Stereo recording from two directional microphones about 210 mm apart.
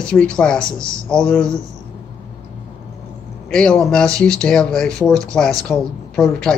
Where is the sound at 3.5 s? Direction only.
5° left (ahead or behind).